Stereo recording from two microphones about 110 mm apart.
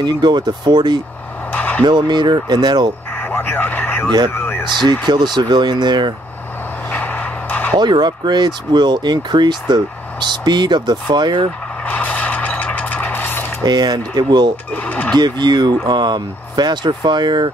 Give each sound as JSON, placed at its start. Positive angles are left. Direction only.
{"t": 0.0, "sound": "speech", "side_deg": -40}
{"t": 1.5, "sound": "a sound", "side_deg": 15}
{"t": 1.9, "sound": "speech", "side_deg": -45}
{"t": 3.2, "sound": "radio", "side_deg": 20}
{"t": 4.3, "sound": "a sound", "side_deg": 20}
{"t": 5.0, "sound": "speech", "side_deg": -40}
{"t": 6.9, "sound": "a sound", "side_deg": 15}
{"t": 7.7, "sound": "speech", "side_deg": -45}
{"t": 11.8, "sound": "vehicle", "side_deg": 15}
{"t": 13.6, "sound": "speech", "side_deg": -40}
{"t": 14.7, "sound": "speech", "side_deg": 15}
{"t": 15.1, "sound": "speech", "side_deg": -40}